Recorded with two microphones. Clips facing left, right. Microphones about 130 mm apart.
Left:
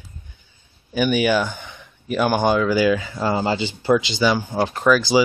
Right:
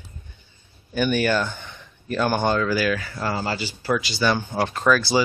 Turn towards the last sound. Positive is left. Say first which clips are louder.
# left 3 dB
turn(degrees=15)  # may be behind; listen again after turning